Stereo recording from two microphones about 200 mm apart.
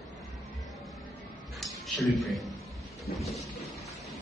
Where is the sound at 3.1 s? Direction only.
50° left (ahead or behind).